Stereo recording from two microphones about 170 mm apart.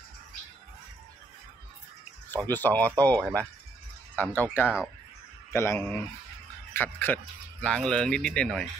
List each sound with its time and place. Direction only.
2.2 s speech: 10° left (ahead or behind)
4.3 s speech: 10° left (ahead or behind)
4.6 s speech: 5° right (ahead or behind)
5.5 s speech: 15° left (ahead or behind)